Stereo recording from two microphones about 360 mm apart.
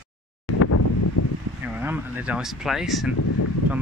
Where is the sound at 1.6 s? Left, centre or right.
Centre.